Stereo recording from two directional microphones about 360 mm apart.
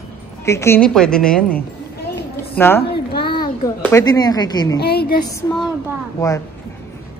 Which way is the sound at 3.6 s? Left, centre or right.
Centre.